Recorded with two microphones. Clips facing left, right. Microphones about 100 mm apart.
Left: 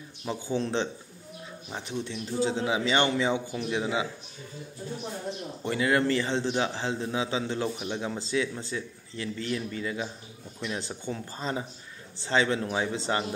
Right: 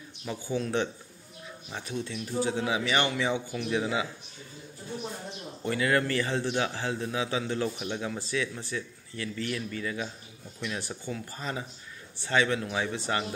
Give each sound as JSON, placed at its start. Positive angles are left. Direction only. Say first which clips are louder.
{"t": 0.2, "sound": "a man's voice", "louder": "left 2 dB", "side_deg": 30}
{"t": 5.6, "sound": "a man's voice", "louder": "left 1 dB", "side_deg": 20}